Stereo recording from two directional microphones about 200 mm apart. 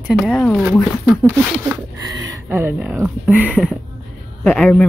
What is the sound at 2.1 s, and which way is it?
Speech, 15° right (ahead or behind).